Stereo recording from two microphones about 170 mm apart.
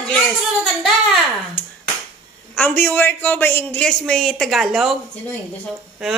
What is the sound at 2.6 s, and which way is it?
A man's voice, 10° left (ahead or behind).